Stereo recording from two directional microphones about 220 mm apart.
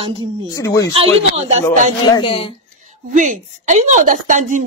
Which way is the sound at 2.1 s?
20° left (ahead or behind).